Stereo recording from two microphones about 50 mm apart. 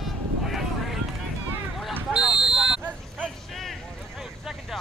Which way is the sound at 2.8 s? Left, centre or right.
Right.